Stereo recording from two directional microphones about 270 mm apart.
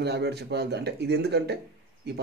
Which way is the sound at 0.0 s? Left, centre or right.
Right.